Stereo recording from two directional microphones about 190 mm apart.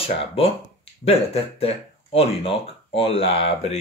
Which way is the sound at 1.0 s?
30° left (ahead or behind).